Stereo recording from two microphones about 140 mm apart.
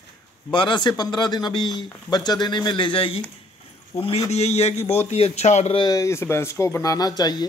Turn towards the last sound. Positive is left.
turn(degrees=30)  # may be behind; listen again after turning